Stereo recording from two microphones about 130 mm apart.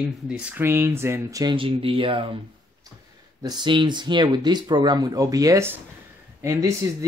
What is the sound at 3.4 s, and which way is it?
Speech, 35° right (ahead or behind).